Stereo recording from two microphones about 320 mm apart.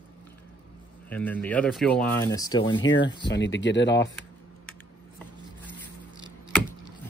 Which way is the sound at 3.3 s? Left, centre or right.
Left.